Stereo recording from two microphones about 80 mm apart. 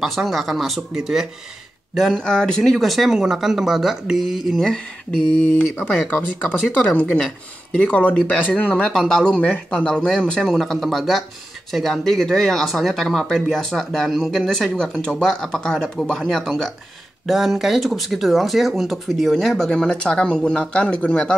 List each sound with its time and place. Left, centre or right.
0.0 s speech: centre
5.4 s speech: centre